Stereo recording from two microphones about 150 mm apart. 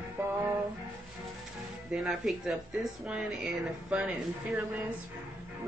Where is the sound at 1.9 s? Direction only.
Centre (ahead or behind).